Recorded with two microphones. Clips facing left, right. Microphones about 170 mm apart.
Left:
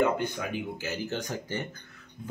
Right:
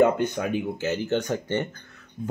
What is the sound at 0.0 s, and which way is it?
Speech, 50° right (ahead or behind).